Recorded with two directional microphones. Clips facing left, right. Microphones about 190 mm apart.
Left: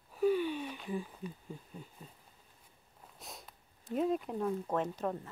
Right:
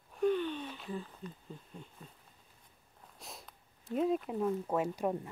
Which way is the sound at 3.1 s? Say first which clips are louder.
Even; centre (ahead or behind).